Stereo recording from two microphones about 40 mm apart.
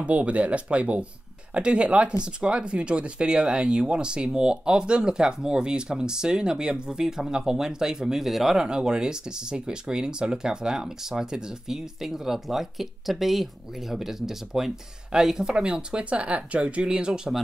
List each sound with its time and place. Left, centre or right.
0.0 s speech: right; by 8.5 s centre
8.5 s speech: centre